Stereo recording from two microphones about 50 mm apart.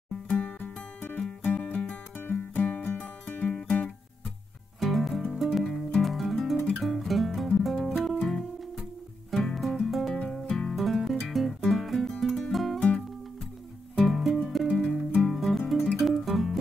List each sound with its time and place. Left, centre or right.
0.1 s music: left
0.6 s music: left
2.1 s music: left
4.7 s music: centre
5.6 s guitar: centre
6.8 s music: centre
10.8 s music: centre
12.7 s music: left
13.9 s music: centre